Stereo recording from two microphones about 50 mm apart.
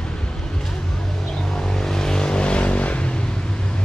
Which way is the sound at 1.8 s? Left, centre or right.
Centre.